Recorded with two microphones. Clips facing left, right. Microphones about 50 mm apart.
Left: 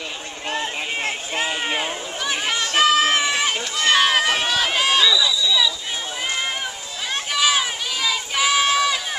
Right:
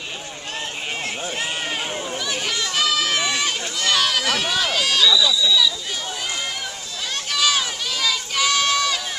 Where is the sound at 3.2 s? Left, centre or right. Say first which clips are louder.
Left 2 dB; left.